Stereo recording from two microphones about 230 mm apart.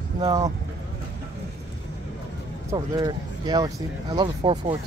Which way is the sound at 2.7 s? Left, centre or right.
Centre.